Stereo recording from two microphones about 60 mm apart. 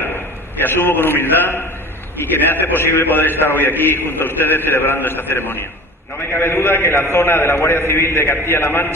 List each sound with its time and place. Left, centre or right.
0.7 s a man's voice: left